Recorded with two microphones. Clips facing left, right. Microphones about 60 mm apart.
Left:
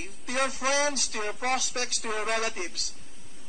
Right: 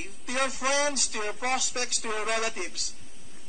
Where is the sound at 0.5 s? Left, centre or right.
Centre.